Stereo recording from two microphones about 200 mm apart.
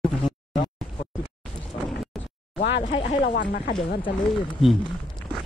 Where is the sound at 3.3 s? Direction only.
50° left (ahead or behind).